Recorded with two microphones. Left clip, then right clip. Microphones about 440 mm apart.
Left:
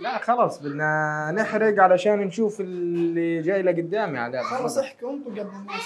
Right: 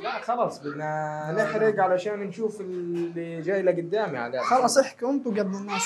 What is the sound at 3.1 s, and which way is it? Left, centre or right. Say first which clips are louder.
Speech: left 5 dB; left.